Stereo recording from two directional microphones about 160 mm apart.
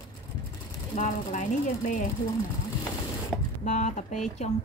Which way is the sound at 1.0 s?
50° left (ahead or behind).